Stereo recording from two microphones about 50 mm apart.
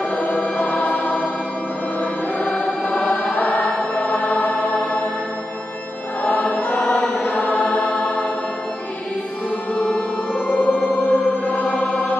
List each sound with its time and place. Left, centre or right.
0.1 s choir: left
2.3 s music: centre
6.2 s music: left
6.8 s chant: centre
7.2 s music: left
9.8 s music: left
10.4 s music: left
11.6 s music: centre